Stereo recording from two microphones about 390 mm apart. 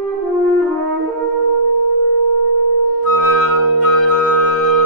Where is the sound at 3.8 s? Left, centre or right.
Left.